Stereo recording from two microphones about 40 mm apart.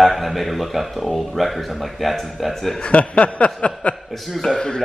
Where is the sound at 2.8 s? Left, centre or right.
Left.